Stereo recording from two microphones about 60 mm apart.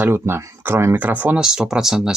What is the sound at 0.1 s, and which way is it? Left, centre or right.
Speech, right.